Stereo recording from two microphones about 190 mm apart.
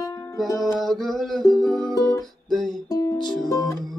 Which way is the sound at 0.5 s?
Centre (ahead or behind).